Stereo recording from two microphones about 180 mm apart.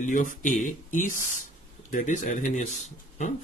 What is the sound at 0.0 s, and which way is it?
Speech, 45° left (ahead or behind).